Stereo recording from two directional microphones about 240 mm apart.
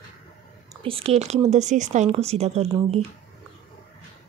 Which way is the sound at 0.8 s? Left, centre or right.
Right.